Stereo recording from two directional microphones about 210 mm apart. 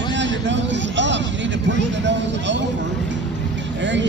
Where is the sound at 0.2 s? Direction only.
60° right (ahead or behind).